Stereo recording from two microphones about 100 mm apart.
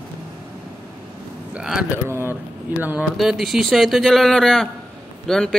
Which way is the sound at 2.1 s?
25° right (ahead or behind).